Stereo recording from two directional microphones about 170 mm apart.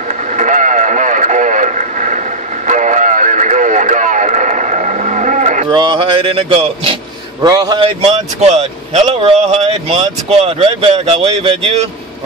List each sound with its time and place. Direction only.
0.4 s radio: 45° right (ahead or behind)
5.7 s speech: 30° right (ahead or behind)
7.4 s speech: 20° right (ahead or behind); by 11.8 s 35° right (ahead or behind)